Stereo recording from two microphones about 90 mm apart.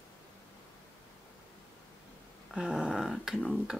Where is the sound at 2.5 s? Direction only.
5° right (ahead or behind).